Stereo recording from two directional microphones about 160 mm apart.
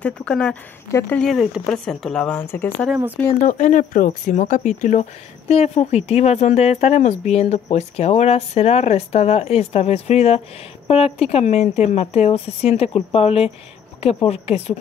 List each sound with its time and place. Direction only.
0.0 s speech: 5° left (ahead or behind)
3.4 s speech: 50° left (ahead or behind)